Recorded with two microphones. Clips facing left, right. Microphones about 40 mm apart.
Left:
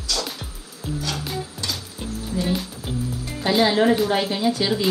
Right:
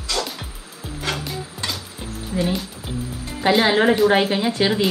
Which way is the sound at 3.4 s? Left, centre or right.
Right.